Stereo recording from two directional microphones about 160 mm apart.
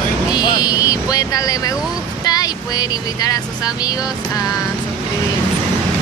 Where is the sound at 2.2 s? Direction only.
25° left (ahead or behind).